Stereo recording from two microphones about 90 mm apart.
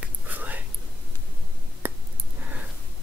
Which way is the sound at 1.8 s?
25° right (ahead or behind).